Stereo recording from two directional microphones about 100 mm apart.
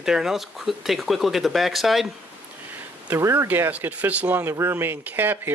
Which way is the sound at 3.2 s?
25° right (ahead or behind).